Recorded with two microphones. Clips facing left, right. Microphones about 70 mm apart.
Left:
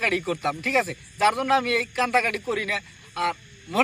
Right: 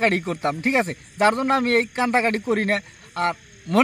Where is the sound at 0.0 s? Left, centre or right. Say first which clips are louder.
Right 3 dB; right.